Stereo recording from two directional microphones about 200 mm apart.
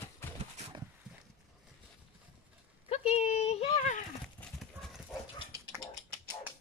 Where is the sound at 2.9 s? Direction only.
30° left (ahead or behind).